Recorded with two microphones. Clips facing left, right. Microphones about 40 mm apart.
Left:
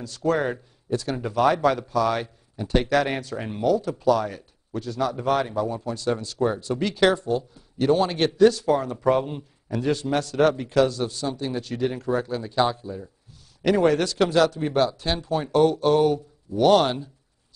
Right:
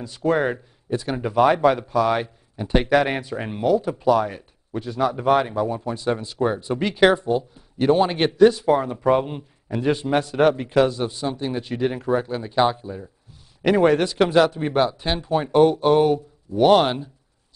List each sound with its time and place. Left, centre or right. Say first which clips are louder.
0.0 s speech: right 3 dB; right